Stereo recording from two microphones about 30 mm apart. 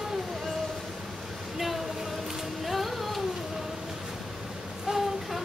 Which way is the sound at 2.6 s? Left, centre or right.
Centre.